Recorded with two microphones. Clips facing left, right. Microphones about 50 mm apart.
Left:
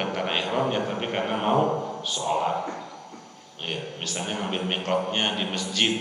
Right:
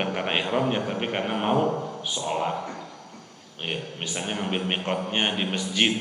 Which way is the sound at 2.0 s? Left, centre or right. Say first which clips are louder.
Left 2 dB; centre.